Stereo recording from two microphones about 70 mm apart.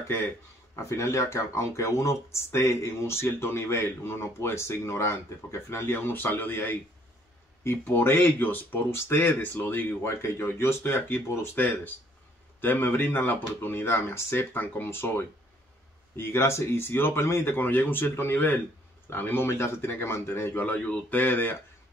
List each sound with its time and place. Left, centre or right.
0.7 s speech: left
10.0 s speech: left
20.6 s a man's voice: centre
21.2 s speech: left